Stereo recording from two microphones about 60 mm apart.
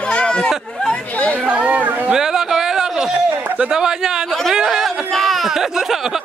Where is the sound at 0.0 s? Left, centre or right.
Centre.